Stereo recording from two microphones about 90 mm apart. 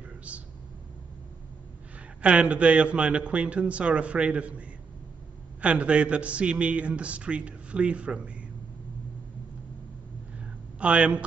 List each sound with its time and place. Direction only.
0.3 s speech: 15° right (ahead or behind)
2.2 s a man's voice: 15° right (ahead or behind)
10.4 s a sound: 15° right (ahead or behind)